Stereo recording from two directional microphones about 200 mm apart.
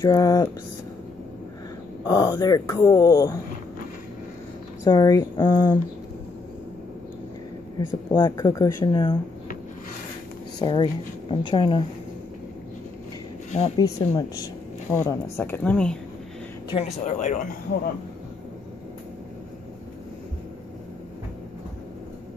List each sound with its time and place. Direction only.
0.0 s speech: 20° left (ahead or behind)
2.0 s speech: 20° left (ahead or behind)
4.8 s speech: 20° left (ahead or behind)
7.8 s speech: 20° left (ahead or behind)
10.6 s speech: 25° left (ahead or behind)
13.7 s speech: 15° left (ahead or behind)
16.7 s speech: 35° left (ahead or behind)